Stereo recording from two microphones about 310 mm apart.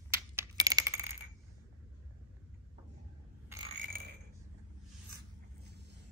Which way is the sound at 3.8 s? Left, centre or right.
Right.